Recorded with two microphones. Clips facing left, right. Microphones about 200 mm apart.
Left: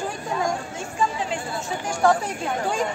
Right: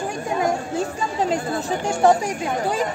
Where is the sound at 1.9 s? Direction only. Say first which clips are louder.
Right 3 dB; 20° right (ahead or behind).